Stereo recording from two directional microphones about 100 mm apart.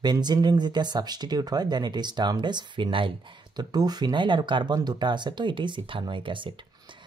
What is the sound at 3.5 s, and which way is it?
Speech, 45° right (ahead or behind).